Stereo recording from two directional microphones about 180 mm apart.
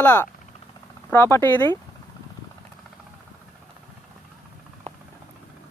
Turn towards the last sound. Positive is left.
turn(degrees=-35)  # may be behind; listen again after turning